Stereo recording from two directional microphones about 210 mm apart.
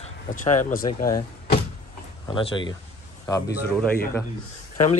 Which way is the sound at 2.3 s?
25° left (ahead or behind).